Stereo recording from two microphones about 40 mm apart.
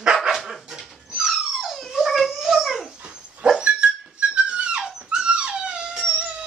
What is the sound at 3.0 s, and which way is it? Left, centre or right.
Dog, right.